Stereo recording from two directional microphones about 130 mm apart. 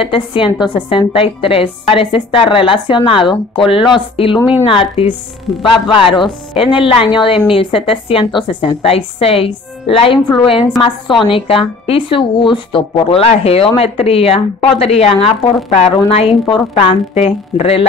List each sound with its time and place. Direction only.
0.0 s a woman's voice: 40° left (ahead or behind)